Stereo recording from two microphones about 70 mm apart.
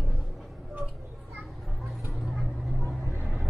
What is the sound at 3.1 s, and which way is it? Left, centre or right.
Vehicle, right.